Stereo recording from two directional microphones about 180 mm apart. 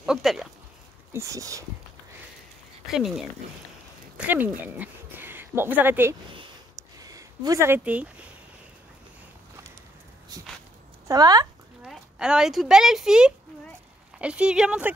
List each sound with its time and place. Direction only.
0.0 s speech: centre (ahead or behind)
1.1 s speech: 15° right (ahead or behind)
2.9 s speech: centre (ahead or behind)
10.3 s a sound: 20° right (ahead or behind)
11.1 s speech: 20° right (ahead or behind)
11.8 s speech: 5° right (ahead or behind)